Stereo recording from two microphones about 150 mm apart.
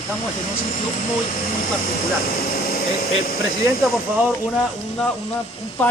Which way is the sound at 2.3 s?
80° left.